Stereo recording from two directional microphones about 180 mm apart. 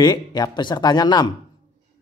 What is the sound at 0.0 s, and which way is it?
Speech, 25° left (ahead or behind).